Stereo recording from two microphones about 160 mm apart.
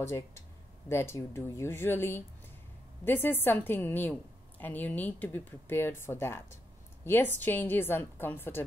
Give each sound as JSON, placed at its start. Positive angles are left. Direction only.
{"t": 0.0, "sound": "a woman's voice", "side_deg": 15}